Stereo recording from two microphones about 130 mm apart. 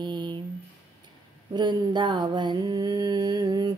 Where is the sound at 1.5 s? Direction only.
35° right (ahead or behind).